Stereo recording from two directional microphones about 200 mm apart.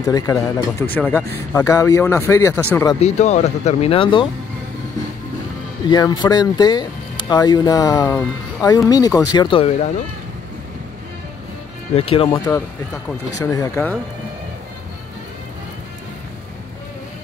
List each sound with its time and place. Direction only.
0.0 s speech: 15° left (ahead or behind)
3.0 s speech: 35° left (ahead or behind)
5.9 s speech: 20° left (ahead or behind)
11.9 s speech: 30° left (ahead or behind)
12.4 s speech: 15° left (ahead or behind)